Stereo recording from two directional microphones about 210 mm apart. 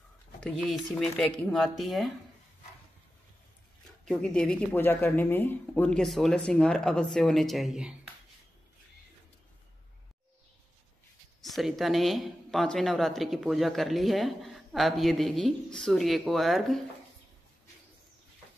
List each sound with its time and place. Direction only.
0.4 s speech: centre (ahead or behind)
4.0 s speech: 5° left (ahead or behind)
11.4 s speech: centre (ahead or behind)